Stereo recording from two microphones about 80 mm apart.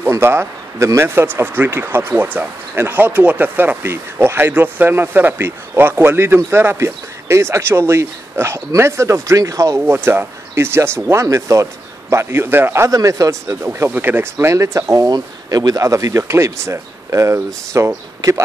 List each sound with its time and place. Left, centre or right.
0.1 s speech: right
9.8 s speech: right
12.9 s speech: right
13.8 s speech: right